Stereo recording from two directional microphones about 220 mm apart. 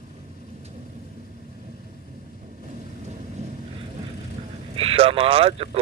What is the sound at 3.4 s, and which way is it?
Vehicle, 30° right (ahead or behind).